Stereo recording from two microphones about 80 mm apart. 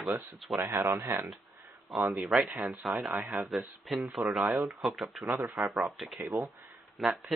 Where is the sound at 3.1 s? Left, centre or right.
Right.